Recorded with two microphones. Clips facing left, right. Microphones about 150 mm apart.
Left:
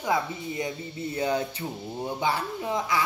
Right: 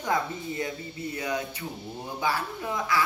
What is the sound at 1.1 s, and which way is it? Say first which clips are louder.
Speech: left 5 dB; 30° left (ahead or behind).